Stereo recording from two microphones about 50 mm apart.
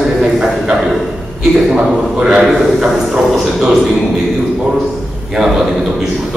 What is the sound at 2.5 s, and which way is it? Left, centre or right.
A man's voice, centre.